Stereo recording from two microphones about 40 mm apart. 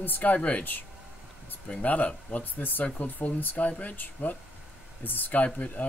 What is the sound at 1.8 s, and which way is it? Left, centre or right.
Speech, left.